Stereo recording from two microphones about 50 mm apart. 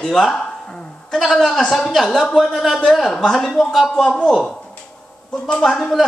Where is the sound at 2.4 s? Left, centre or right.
Centre.